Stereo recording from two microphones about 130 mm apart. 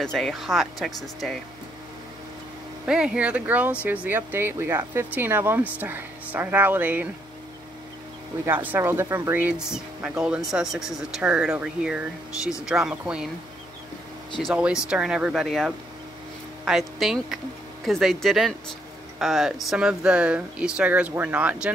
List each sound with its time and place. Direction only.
0.0 s speech: 5° left (ahead or behind)
2.9 s speech: 5° right (ahead or behind)
8.6 s speech: 15° right (ahead or behind)
14.4 s speech: 5° right (ahead or behind)